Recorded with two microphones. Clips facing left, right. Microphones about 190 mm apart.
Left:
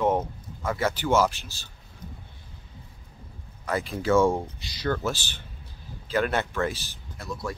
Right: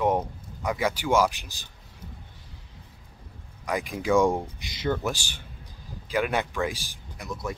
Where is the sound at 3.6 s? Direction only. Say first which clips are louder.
Left 1 dB; 15° right (ahead or behind).